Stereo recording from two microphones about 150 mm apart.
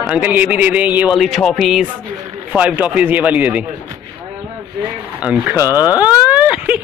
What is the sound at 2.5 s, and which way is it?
Speech, 10° right (ahead or behind).